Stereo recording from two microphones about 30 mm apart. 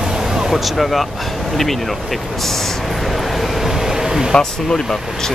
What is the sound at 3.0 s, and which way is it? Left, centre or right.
Vehicle, centre.